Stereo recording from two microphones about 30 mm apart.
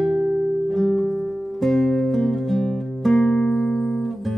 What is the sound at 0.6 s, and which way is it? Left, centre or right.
Music, centre.